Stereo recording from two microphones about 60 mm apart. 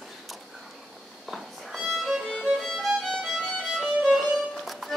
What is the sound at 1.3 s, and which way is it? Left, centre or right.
Music, centre.